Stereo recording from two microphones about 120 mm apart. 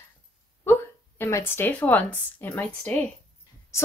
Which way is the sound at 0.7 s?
20° left (ahead or behind).